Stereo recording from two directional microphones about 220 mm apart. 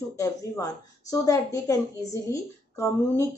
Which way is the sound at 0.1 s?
15° left (ahead or behind).